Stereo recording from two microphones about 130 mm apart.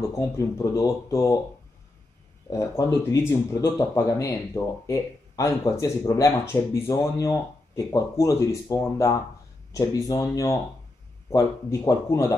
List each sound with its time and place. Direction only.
0.1 s speech: 25° left (ahead or behind)
2.5 s speech: 20° left (ahead or behind)